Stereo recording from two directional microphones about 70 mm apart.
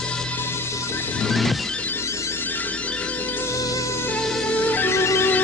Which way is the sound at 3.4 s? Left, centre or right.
Left.